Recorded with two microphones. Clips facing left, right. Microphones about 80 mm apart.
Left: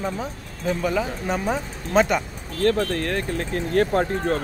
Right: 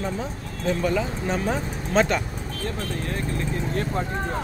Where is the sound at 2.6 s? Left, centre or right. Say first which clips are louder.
Left 10 dB; left.